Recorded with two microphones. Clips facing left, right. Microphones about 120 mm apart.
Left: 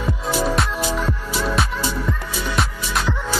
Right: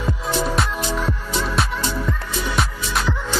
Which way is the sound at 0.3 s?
5° left (ahead or behind).